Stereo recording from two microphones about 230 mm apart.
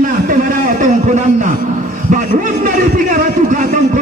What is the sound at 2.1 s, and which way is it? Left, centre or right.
A man's voice, right.